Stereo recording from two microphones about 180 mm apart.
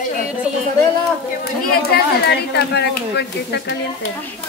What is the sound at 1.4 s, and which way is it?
Speech, 60° left (ahead or behind).